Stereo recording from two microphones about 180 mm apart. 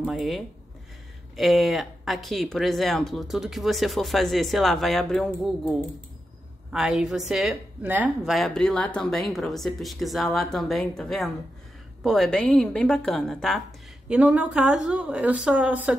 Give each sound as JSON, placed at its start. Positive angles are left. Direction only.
{"t": 0.0, "sound": "a woman's voice", "side_deg": 0}